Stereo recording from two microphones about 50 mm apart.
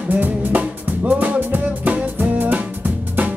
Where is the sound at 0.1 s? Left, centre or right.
Right.